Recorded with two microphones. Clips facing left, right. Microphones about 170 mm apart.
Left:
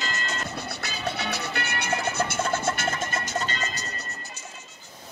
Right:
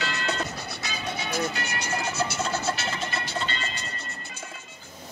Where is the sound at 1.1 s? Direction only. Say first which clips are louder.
Right 2 dB; 65° left (ahead or behind); by 3.8 s 45° left (ahead or behind).